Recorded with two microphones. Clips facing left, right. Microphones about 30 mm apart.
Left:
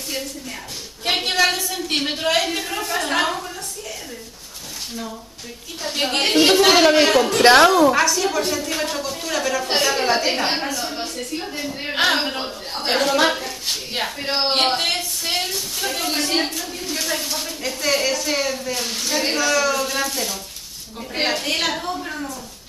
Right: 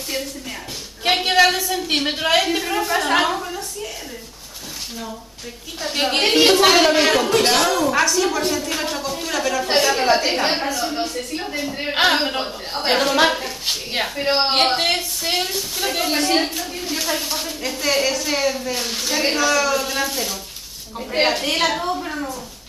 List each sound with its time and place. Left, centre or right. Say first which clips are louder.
1.0 s a woman's voice: right 3 dB; centre
5.8 s a woman's voice: right 2 dB; centre
6.7 s a woman's voice: left 1 dB; centre
7.1 s a woman's voice: even; centre
7.4 s a woman's voice: left 6 dB; left
7.9 s a woman's voice: even; centre
11.7 s a woman's voice: right 2 dB; centre